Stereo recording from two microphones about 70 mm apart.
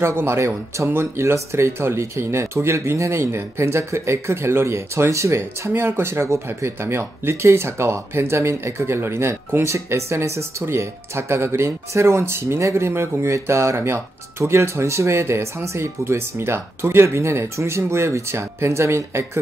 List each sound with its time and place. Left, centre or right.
0.0 s speech: right